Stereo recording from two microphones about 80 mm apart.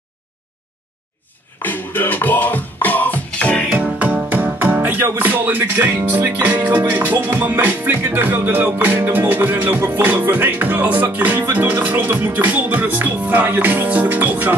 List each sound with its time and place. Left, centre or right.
1.6 s music: left
3.8 s music: centre